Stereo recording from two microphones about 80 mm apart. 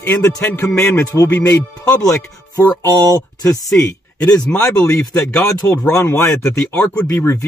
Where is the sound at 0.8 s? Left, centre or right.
Left.